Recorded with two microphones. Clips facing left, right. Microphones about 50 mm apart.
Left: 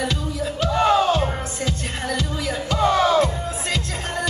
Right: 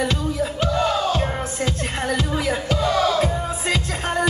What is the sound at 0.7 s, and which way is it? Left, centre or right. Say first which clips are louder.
Music: left 5 dB; left.